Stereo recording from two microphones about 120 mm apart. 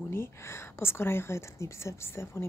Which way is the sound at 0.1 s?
20° left (ahead or behind).